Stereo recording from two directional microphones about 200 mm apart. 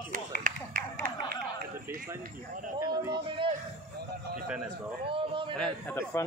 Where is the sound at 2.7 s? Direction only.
15° right (ahead or behind).